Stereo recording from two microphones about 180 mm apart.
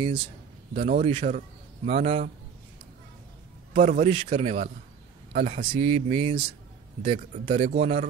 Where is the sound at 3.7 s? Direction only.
45° right (ahead or behind).